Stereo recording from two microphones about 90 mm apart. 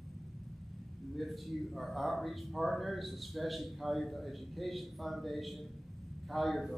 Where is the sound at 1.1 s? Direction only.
Centre (ahead or behind).